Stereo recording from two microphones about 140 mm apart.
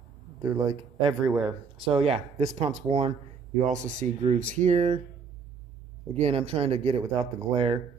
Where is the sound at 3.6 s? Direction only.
60° right (ahead or behind).